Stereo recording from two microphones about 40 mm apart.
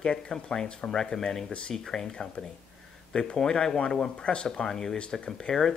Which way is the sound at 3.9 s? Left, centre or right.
Left.